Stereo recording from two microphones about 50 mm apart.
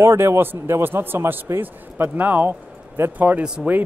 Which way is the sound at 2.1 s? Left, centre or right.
Right.